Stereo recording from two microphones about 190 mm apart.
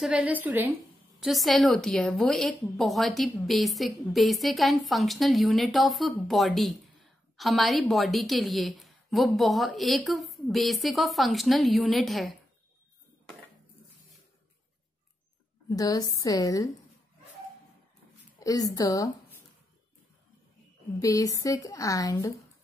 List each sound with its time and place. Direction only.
0.0 s a woman's voice: 5° right (ahead or behind)
15.7 s a woman's voice: 20° left (ahead or behind)
18.4 s a woman's voice: 20° left (ahead or behind)
21.0 s a woman's voice: 20° left (ahead or behind)